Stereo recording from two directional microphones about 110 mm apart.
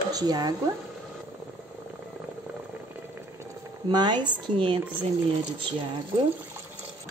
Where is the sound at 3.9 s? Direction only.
40° right (ahead or behind).